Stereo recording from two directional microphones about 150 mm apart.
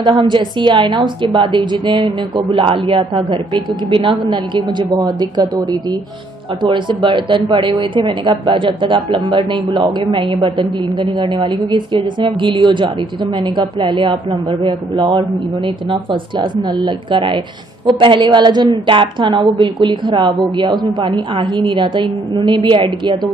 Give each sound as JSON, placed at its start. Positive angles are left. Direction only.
{"t": 0.0, "sound": "a woman's voice", "side_deg": -30}